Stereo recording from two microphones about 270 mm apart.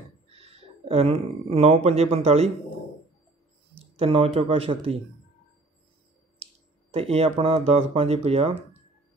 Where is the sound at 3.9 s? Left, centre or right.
Right.